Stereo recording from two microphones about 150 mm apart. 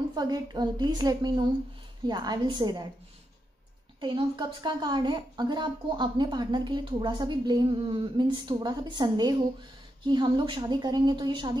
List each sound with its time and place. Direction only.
0.1 s a woman's voice: 25° right (ahead or behind)
4.0 s a woman's voice: 30° right (ahead or behind)